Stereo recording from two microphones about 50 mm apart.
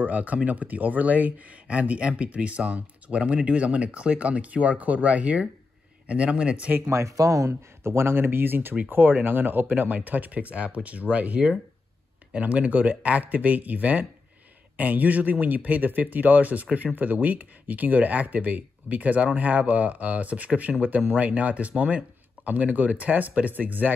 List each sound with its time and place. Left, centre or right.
0.0 s speech: right
6.9 s speech: right